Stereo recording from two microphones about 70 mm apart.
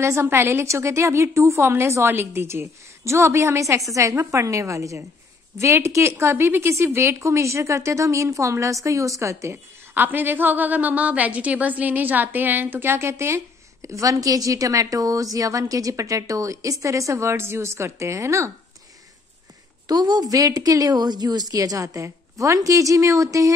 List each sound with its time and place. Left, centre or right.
0.0 s a woman's voice: right
9.9 s a woman's voice: right
13.8 s a woman's voice: right
19.9 s a woman's voice: right